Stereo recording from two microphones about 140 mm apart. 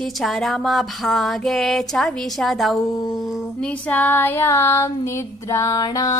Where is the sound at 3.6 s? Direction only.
10° left (ahead or behind).